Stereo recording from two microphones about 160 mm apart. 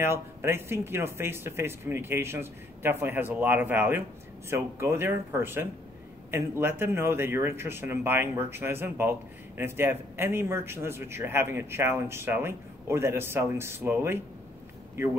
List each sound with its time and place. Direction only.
0.0 s a man's voice: 15° right (ahead or behind)